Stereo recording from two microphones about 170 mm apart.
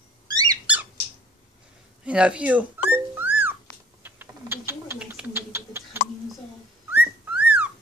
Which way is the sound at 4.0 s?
10° right (ahead or behind).